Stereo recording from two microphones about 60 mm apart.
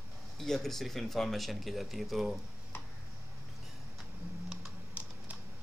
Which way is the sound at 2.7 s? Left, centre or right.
Left.